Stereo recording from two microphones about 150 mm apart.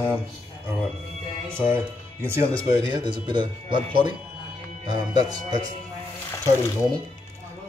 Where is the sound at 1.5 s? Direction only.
15° right (ahead or behind).